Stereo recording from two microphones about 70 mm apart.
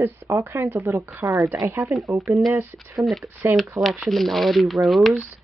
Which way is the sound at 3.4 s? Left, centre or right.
Right.